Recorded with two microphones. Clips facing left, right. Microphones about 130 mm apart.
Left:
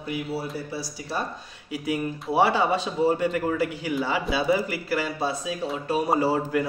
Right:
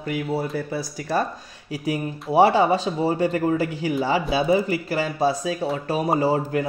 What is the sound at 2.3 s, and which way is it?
Speech, 30° right (ahead or behind).